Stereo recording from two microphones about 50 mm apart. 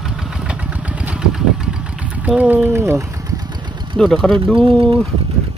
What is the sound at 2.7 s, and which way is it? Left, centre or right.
Speech, right.